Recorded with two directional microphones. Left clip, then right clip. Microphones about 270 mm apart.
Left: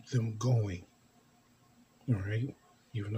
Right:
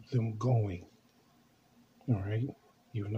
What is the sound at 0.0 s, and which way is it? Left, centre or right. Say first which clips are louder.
Speech: right 1 dB; centre.